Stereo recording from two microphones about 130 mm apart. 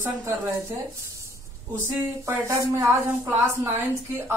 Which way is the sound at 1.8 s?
20° right (ahead or behind).